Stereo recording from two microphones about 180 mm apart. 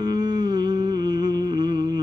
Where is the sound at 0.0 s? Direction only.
25° right (ahead or behind).